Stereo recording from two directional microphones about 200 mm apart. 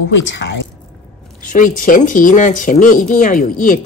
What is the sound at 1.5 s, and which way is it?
Speech, 40° left (ahead or behind).